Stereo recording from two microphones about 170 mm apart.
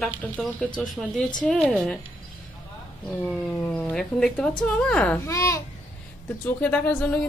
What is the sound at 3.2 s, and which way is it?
Speech, 5° left (ahead or behind).